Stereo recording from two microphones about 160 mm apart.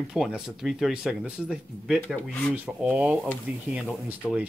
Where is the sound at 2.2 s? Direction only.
10° left (ahead or behind).